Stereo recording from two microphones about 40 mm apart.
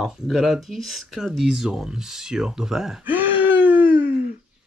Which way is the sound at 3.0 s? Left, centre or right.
Right.